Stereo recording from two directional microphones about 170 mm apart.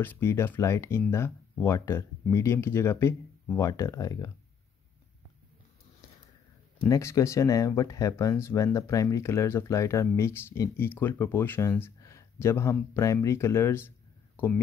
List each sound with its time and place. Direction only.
0.0 s speech: 15° left (ahead or behind)
6.9 s speech: 15° left (ahead or behind)